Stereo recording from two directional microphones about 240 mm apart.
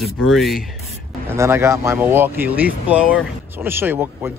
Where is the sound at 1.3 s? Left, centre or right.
Centre.